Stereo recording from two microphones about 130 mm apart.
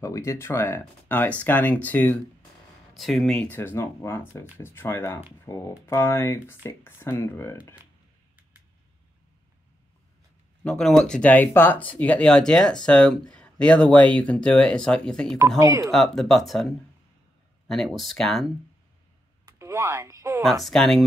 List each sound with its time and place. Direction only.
0.0 s speech: 25° left (ahead or behind)
2.9 s speech: centre (ahead or behind); by 7.5 s 20° left (ahead or behind)
10.6 s speech: 5° left (ahead or behind)
15.2 s speech: 25° right (ahead or behind)
15.9 s speech: centre (ahead or behind)
17.6 s speech: centre (ahead or behind)
19.4 s a sound: 20° right (ahead or behind)
20.6 s speech: 5° left (ahead or behind)